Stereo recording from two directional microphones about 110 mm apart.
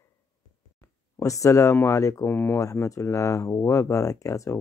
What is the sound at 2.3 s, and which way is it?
Speech, 20° left (ahead or behind).